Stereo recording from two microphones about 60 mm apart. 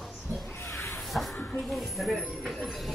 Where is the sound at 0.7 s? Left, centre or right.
Left.